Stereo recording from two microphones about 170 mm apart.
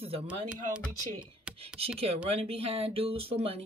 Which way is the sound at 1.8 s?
35° right (ahead or behind).